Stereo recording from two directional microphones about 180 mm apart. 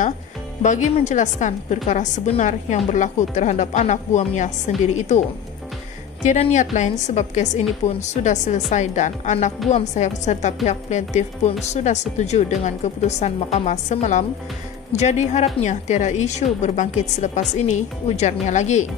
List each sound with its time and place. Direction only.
0.6 s a woman's voice: 40° left (ahead or behind)
6.2 s a woman's voice: 40° left (ahead or behind)